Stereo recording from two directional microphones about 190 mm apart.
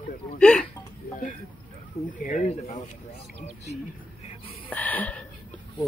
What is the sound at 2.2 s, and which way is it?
Speech, 40° left (ahead or behind).